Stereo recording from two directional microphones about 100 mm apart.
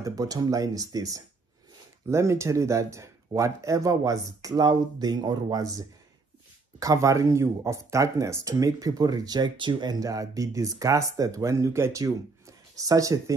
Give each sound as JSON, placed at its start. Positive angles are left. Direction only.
{"t": 0.0, "sound": "speech", "side_deg": -35}